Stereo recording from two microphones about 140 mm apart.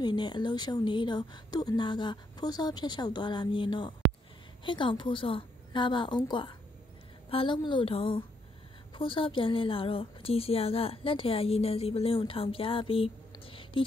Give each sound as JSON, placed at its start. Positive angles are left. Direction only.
{"t": 0.0, "sound": "a woman's voice", "side_deg": 35}
{"t": 13.5, "sound": "whispering", "side_deg": 40}